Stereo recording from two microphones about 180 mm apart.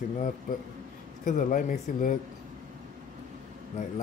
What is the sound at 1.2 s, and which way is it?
Speech, 50° left (ahead or behind).